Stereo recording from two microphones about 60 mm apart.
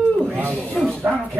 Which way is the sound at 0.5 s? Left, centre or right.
Centre.